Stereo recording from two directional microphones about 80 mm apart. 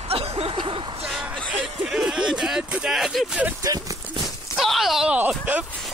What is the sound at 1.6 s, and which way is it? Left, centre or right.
Speech, centre.